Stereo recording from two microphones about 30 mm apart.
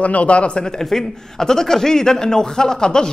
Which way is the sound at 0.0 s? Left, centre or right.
Left.